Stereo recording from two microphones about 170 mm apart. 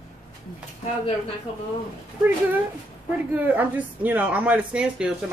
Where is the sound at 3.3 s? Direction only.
10° right (ahead or behind).